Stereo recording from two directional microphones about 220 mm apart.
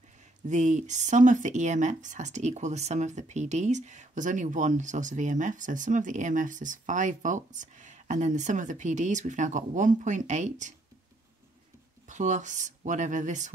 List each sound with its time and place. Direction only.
0.5 s speech: 30° right (ahead or behind)
12.1 s speech: 35° right (ahead or behind)